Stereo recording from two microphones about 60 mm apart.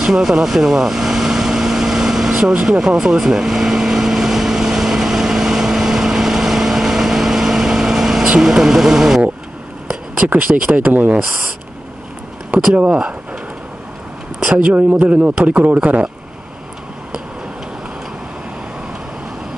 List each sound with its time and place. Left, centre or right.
0.0 s vehicle: centre
8.3 s speech: centre
10.3 s a man's voice: right
12.5 s speech: right
12.9 s a sound: centre
14.6 s a man's voice: right